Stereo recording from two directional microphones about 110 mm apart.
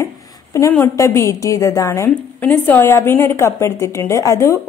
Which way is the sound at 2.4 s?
15° left (ahead or behind).